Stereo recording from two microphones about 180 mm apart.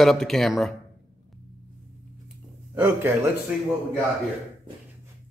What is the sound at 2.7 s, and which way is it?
Speech, 10° right (ahead or behind).